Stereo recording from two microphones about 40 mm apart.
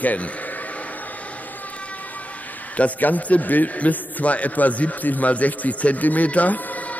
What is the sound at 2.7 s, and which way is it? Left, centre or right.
A man's voice, left.